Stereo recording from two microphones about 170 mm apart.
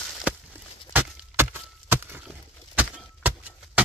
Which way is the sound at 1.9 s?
15° right (ahead or behind).